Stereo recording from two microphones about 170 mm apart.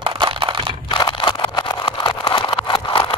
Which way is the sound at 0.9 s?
25° left (ahead or behind).